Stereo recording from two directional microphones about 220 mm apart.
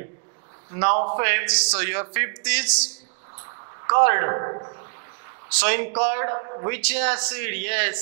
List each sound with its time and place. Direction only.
0.7 s a man's voice: 15° right (ahead or behind)
3.4 s a sound: 20° right (ahead or behind)
5.6 s a man's voice: 10° right (ahead or behind)
6.8 s a man's voice: 10° right (ahead or behind)